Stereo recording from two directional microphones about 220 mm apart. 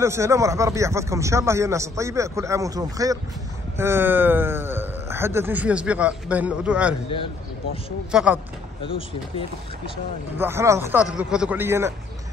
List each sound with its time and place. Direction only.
0.0 s speech: 10° right (ahead or behind)
8.1 s speech: 5° right (ahead or behind)
10.3 s speech: 10° right (ahead or behind)